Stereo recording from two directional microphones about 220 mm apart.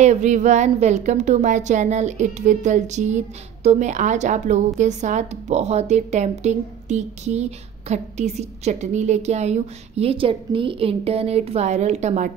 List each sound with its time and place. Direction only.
0.0 s a woman's voice: 30° right (ahead or behind)